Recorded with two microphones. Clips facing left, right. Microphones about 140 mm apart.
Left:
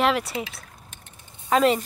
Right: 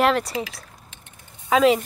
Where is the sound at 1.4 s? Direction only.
Centre (ahead or behind).